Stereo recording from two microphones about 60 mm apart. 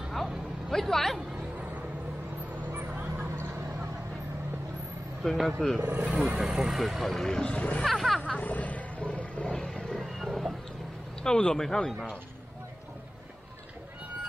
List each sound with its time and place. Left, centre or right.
0.7 s speech: centre
2.6 s vehicle: right
3.3 s vehicle: right
5.2 s speech: centre
5.9 s speech: right
6.3 s speech: centre; by 7.8 s left
7.8 s speech: centre
8.2 s roaring cats: left
10.1 s a sound: centre
11.2 s speech: centre